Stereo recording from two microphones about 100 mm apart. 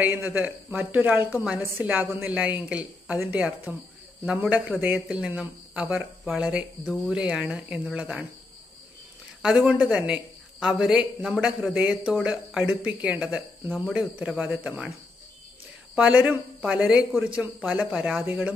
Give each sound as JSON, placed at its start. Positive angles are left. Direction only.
{"t": 0.0, "sound": "a man's voice", "side_deg": -15}
{"t": 9.4, "sound": "a man's voice", "side_deg": -5}
{"t": 15.9, "sound": "a man's voice", "side_deg": -5}